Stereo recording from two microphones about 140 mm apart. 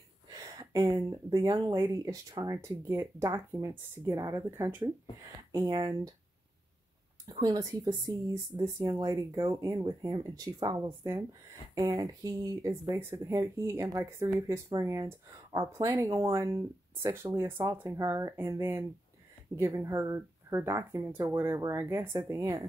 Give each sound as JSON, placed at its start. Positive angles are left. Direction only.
{"t": 0.3, "sound": "speech", "side_deg": -25}
{"t": 5.5, "sound": "speech", "side_deg": -25}
{"t": 7.2, "sound": "speech", "side_deg": -25}